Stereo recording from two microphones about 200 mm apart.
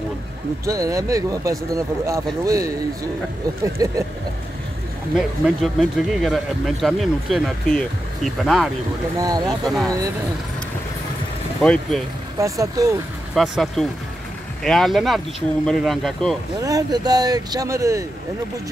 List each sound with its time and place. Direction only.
0.7 s speech: 15° right (ahead or behind)
3.8 s speech: 15° right (ahead or behind)
5.1 s speech: centre (ahead or behind)
9.2 s speech: 20° right (ahead or behind)
9.7 s speech: centre (ahead or behind)
11.6 s speech: 5° left (ahead or behind)
12.4 s speech: 15° right (ahead or behind)
13.3 s speech: centre (ahead or behind)
16.6 s speech: 20° right (ahead or behind)